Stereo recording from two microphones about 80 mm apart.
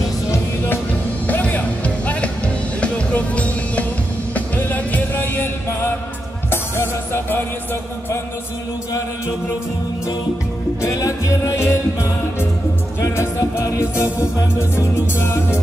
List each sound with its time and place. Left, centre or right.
1.2 s music: centre
10.8 s music: left